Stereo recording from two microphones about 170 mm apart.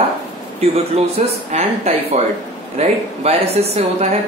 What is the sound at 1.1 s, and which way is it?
A woman's voice, 35° right (ahead or behind).